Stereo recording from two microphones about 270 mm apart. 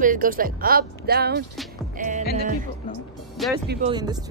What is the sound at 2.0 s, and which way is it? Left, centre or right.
Music, right.